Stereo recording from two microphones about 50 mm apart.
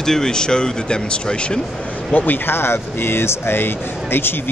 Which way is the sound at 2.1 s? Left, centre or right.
Left.